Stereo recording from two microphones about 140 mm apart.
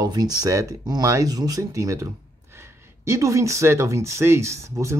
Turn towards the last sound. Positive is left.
turn(degrees=-20)  # may be behind; listen again after turning